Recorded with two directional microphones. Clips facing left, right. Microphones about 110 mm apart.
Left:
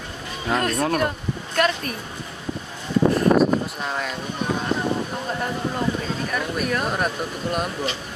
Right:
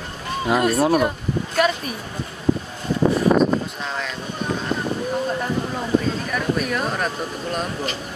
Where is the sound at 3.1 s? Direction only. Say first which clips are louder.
Right 1 dB; 5° left (ahead or behind).